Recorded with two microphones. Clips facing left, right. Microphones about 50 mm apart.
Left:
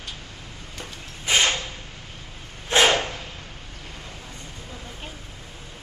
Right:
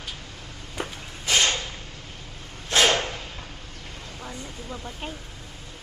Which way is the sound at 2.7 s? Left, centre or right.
Centre.